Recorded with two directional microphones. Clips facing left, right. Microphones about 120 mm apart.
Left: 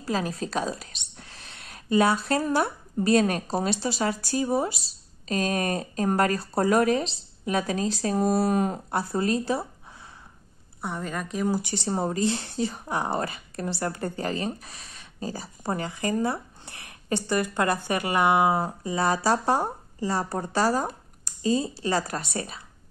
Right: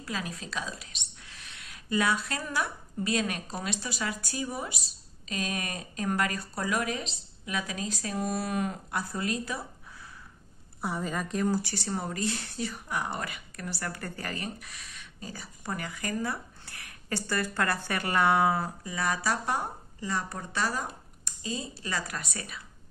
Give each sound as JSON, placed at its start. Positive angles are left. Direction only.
{"t": 0.0, "sound": "a sound", "side_deg": 35}
{"t": 1.9, "sound": "speech", "side_deg": 30}
{"t": 10.8, "sound": "a woman's voice", "side_deg": -5}
{"t": 11.5, "sound": "speech", "side_deg": 20}